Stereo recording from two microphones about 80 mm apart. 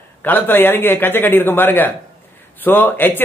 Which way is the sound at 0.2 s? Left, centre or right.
Left.